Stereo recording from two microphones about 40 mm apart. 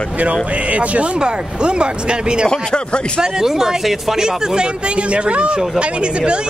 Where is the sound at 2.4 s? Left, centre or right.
Left.